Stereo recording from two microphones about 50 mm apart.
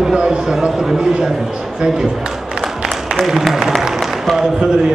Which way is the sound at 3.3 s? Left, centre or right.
Centre.